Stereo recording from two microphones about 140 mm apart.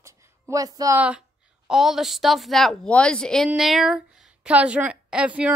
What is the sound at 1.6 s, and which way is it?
A woman's voice, centre (ahead or behind).